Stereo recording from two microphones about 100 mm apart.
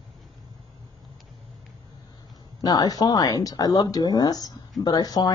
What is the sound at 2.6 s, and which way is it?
A woman's voice, 40° left (ahead or behind).